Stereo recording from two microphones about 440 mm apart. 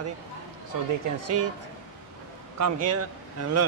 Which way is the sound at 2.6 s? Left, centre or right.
Right.